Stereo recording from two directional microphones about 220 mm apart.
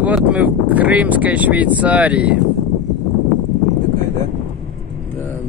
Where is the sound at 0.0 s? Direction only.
5° right (ahead or behind).